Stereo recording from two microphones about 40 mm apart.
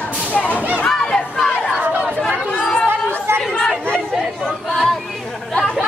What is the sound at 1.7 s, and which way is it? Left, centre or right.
Chatter, right.